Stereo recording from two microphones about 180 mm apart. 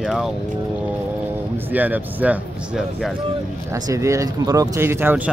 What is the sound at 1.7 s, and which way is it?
Speech, 10° right (ahead or behind).